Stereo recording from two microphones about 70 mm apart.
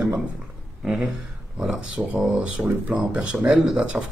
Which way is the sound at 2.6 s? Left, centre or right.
Centre.